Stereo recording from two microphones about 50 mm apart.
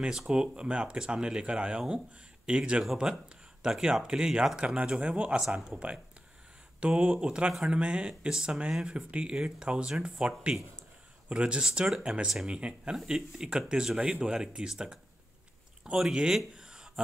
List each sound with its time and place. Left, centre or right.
0.3 s speech: centre
5.4 s speech: centre
6.8 s speech: centre
16.5 s a sound: centre